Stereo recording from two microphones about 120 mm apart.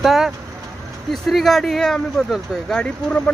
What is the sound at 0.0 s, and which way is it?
Speech, centre (ahead or behind).